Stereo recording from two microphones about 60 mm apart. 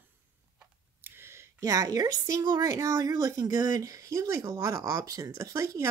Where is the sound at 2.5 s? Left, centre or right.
Right.